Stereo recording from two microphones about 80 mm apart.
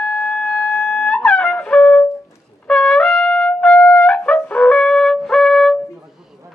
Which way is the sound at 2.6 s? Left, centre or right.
Centre.